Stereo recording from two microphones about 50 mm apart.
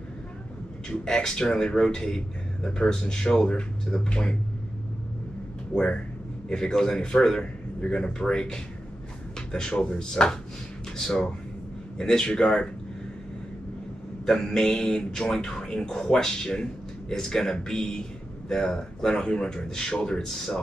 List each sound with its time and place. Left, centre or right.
0.8 s speech: centre
6.5 s speech: centre
14.2 s speech: centre